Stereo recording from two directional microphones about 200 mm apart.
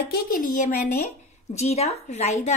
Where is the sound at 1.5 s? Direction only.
35° left (ahead or behind).